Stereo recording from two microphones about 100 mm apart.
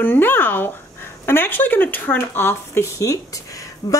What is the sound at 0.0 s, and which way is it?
Speech, 20° left (ahead or behind).